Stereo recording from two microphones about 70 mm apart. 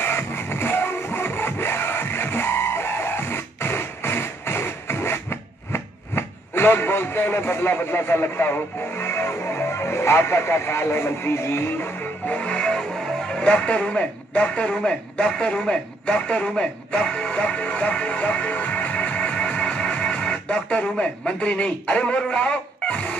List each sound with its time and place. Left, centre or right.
0.0 s music: left
12.3 s music: centre
13.3 s speech: centre